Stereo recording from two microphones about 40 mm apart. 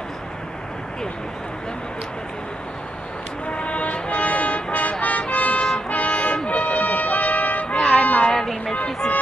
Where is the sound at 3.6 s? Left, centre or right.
Left.